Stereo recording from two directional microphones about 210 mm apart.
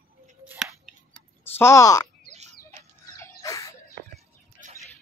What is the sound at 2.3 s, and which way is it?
Bird, 35° right (ahead or behind).